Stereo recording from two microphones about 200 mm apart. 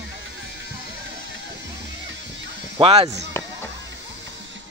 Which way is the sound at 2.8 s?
30° right (ahead or behind).